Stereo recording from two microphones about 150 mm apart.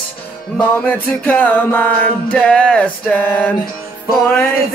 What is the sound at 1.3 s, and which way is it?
Music, 10° left (ahead or behind).